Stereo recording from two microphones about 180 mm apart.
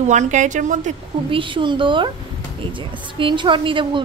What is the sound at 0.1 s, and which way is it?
Speech, 40° right (ahead or behind).